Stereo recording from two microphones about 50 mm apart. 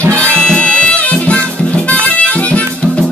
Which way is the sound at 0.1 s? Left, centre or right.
Centre.